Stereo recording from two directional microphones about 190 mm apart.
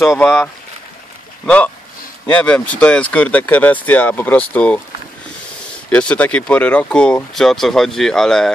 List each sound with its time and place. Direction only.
0.1 s speech: 5° left (ahead or behind)
5.9 s speech: 5° left (ahead or behind)